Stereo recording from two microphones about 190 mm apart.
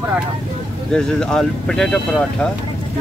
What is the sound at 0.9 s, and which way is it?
Speech, 5° left (ahead or behind).